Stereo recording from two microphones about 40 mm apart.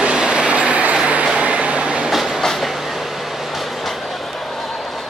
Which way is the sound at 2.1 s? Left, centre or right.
Centre.